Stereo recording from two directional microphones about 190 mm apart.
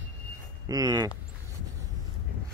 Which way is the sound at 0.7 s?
20° right (ahead or behind).